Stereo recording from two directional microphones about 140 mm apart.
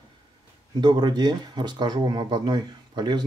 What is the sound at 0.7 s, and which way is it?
Speech, 30° right (ahead or behind).